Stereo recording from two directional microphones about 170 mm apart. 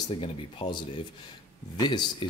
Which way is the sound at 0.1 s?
30° left (ahead or behind).